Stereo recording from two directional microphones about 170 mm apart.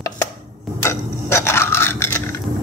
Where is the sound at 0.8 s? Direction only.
15° left (ahead or behind).